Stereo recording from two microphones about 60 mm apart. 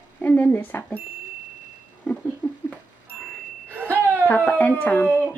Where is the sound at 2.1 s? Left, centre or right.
Centre.